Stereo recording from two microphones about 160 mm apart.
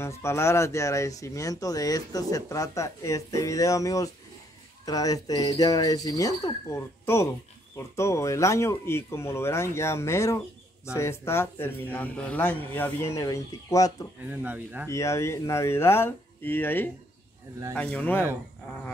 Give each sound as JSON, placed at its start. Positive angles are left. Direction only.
{"t": 0.0, "sound": "a man's voice", "side_deg": 15}
{"t": 14.2, "sound": "speech", "side_deg": -10}
{"t": 14.9, "sound": "a man's voice", "side_deg": 20}